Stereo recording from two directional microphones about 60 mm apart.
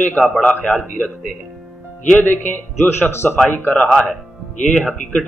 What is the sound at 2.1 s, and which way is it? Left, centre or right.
Speech, left.